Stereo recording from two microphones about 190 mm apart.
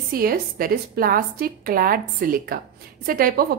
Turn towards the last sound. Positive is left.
turn(degrees=-50)  # may be behind; listen again after turning